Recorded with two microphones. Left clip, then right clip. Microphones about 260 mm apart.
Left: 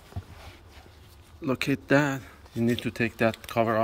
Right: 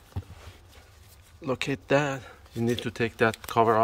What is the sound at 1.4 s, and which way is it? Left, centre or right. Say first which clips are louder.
A man's voice: left 1 dB; centre.